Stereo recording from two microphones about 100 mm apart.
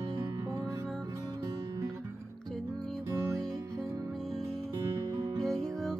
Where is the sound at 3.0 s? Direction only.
30° right (ahead or behind).